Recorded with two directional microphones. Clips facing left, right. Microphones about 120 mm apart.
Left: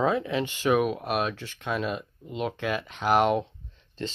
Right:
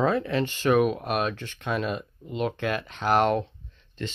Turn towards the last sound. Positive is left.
turn(degrees=35)  # may be behind; listen again after turning